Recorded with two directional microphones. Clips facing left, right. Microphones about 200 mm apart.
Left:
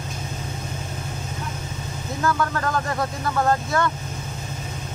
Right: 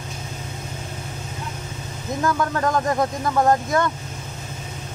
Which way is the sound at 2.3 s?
20° right (ahead or behind).